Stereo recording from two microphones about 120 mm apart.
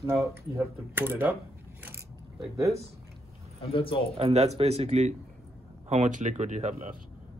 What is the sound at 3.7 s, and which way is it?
Speech, 50° left (ahead or behind).